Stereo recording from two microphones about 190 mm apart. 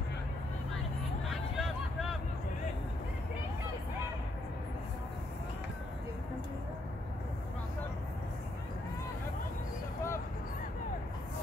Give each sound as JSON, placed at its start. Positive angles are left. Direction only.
{"t": 1.6, "sound": "vehicle", "side_deg": 0}